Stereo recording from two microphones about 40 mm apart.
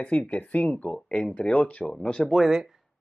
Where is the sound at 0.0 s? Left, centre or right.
Left.